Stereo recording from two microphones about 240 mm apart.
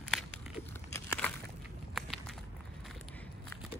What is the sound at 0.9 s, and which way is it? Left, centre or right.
Crumpling, centre.